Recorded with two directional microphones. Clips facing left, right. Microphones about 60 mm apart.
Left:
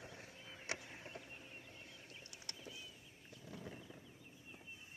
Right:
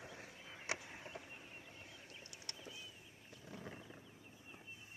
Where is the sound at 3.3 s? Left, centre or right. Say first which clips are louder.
Even; centre.